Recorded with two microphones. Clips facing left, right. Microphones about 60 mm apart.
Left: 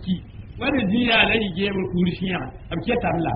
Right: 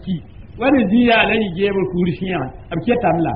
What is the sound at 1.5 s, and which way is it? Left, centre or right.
Speech, centre.